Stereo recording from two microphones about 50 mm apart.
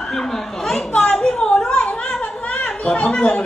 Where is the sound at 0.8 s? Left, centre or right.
Left.